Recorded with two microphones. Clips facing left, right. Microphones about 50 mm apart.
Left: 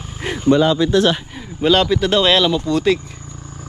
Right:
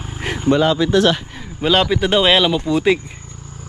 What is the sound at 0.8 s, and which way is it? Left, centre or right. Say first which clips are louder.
Speech: even; right.